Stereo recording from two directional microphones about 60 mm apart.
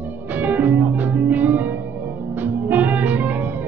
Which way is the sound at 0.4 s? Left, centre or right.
Right.